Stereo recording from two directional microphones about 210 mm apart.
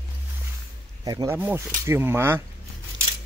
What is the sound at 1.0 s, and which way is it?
Speech, 15° right (ahead or behind).